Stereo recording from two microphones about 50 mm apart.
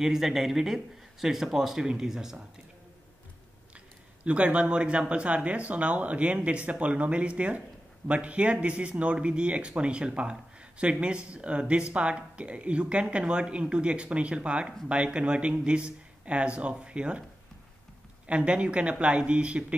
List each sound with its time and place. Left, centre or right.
0.0 s speech: centre
4.2 s speech: right
18.2 s speech: right